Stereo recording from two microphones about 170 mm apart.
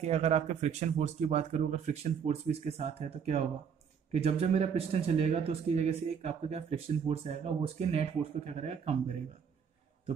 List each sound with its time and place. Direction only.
0.0 s speech: 40° right (ahead or behind)